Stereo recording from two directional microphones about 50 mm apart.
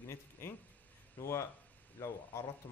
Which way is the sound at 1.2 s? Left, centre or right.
Left.